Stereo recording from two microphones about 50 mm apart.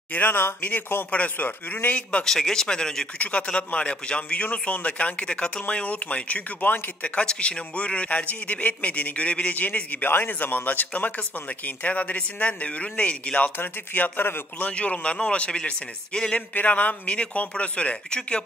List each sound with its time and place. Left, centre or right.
0.1 s a man's voice: left
2.2 s speech: centre
3.2 s speech: left
4.5 s a man's voice: left
13.6 s a man's voice: left
14.7 s speech: left